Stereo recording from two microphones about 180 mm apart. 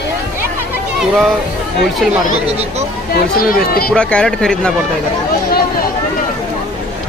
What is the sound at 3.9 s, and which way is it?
Speech, 5° left (ahead or behind).